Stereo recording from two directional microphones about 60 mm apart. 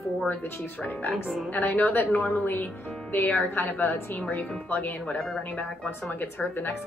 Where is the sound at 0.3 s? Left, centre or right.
Left.